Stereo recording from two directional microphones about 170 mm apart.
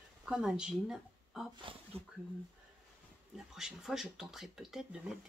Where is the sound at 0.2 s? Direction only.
5° right (ahead or behind).